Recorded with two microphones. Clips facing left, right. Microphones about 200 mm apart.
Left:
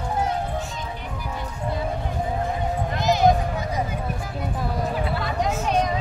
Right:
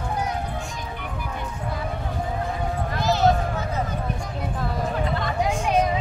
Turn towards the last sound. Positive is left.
turn(degrees=-5)  # may be behind; listen again after turning